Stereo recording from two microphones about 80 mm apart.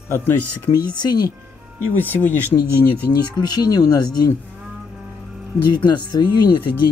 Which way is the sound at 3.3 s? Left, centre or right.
Left.